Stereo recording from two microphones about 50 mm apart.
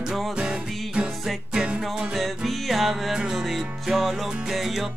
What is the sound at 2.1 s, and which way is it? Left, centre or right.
Music, centre.